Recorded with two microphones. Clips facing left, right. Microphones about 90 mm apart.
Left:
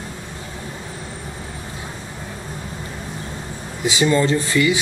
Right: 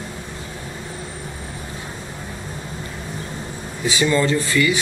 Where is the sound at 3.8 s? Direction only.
25° left (ahead or behind).